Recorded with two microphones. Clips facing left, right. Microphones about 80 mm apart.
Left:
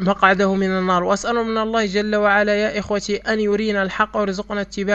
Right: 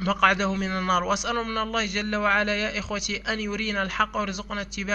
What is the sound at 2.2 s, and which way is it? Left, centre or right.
A man's voice, left.